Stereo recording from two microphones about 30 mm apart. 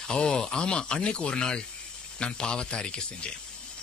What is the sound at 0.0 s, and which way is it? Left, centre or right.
Speech, left.